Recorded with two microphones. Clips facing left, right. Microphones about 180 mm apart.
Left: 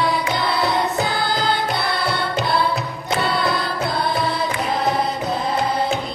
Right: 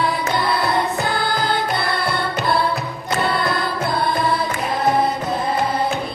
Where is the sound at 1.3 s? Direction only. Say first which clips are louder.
Even; 50° right (ahead or behind).